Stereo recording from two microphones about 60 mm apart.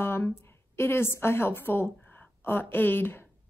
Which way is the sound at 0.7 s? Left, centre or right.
Left.